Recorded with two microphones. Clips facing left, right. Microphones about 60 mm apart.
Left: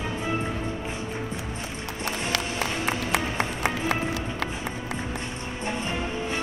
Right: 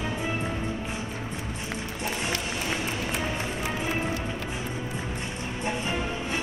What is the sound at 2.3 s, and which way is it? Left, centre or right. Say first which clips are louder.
Music: left 2 dB; left.